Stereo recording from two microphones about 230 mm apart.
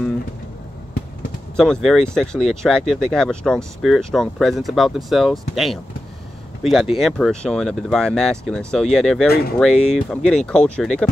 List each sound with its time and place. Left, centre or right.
1.6 s speech: centre
9.3 s speech: left
9.6 s speech: centre